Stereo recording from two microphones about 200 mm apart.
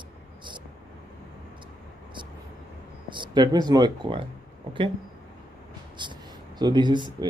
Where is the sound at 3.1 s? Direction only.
20° right (ahead or behind).